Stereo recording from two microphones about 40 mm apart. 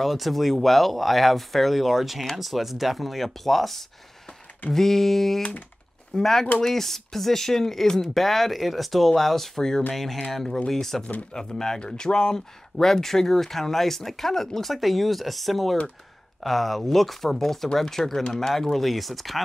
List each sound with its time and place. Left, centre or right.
0.0 s speech: centre